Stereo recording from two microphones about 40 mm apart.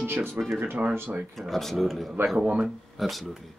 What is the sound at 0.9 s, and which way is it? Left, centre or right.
Speech, right.